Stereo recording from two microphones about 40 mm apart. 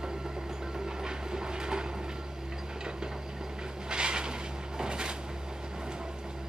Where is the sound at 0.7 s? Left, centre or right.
Centre.